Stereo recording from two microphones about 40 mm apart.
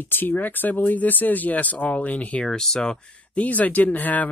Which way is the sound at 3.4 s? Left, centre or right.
Left.